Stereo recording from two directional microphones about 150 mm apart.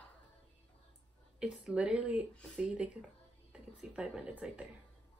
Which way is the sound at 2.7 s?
5° right (ahead or behind).